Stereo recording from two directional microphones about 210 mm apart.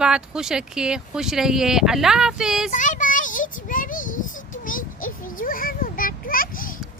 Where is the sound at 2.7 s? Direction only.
35° left (ahead or behind).